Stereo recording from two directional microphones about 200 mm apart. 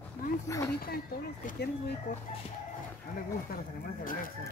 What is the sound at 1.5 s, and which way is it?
Speech, 55° left (ahead or behind).